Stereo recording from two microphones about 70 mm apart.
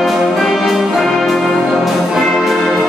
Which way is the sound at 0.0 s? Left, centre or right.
Centre.